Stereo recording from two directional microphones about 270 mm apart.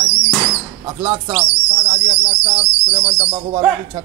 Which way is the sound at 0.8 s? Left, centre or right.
Centre.